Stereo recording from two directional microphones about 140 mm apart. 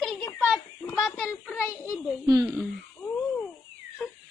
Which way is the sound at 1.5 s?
20° left (ahead or behind).